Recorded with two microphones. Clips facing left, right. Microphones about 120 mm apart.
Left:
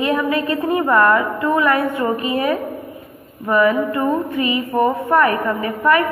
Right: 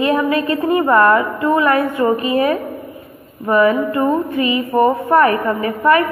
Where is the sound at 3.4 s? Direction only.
30° right (ahead or behind).